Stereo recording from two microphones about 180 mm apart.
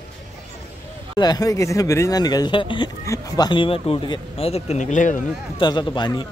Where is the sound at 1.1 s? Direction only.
20° left (ahead or behind); by 5.1 s 40° left (ahead or behind).